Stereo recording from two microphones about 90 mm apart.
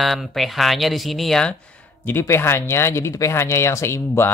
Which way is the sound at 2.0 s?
30° left (ahead or behind).